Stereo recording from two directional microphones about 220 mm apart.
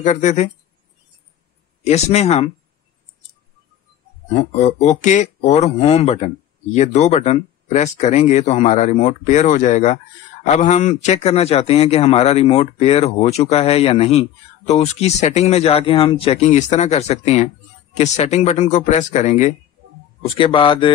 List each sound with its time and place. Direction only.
0.0 s speech: 35° left (ahead or behind)
1.9 s a man's voice: 30° left (ahead or behind)
4.4 s a man's voice: 30° left (ahead or behind)